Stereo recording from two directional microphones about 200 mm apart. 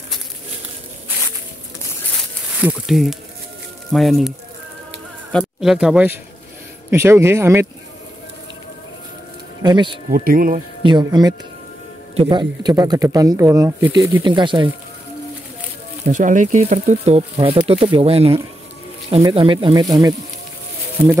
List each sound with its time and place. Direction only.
2.1 s a sound: 5° right (ahead or behind)
3.9 s speech: centre (ahead or behind)
5.4 s speech: 5° right (ahead or behind)
9.6 s speech: 20° right (ahead or behind)
10.1 s speech: 45° right (ahead or behind)
10.8 s speech: 20° right (ahead or behind)
16.1 s speech: 40° right (ahead or behind); by 21.1 s 10° right (ahead or behind)